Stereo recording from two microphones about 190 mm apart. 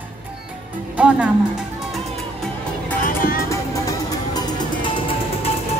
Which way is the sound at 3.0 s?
45° left (ahead or behind).